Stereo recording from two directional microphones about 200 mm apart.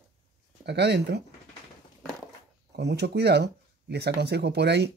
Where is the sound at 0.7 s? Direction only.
60° right (ahead or behind).